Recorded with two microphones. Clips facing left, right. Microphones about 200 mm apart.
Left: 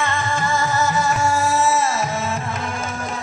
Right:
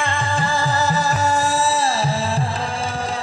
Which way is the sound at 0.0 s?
30° right (ahead or behind).